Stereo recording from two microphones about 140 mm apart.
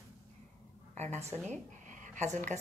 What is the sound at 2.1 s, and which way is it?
Speech, 55° right (ahead or behind).